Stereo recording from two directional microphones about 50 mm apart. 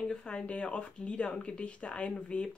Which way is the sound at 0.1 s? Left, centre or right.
Centre.